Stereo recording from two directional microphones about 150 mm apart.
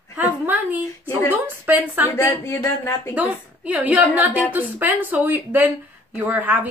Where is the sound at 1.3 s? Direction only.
10° right (ahead or behind).